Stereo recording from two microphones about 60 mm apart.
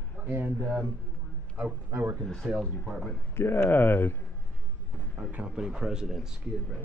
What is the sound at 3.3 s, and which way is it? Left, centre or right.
Speech, left.